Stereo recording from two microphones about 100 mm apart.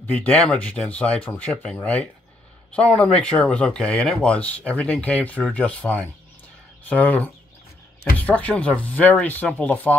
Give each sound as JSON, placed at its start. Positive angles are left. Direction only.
{"t": 0.1, "sound": "speech", "side_deg": 10}